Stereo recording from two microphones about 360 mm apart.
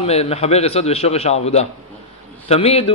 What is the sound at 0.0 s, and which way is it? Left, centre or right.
A man's voice, centre.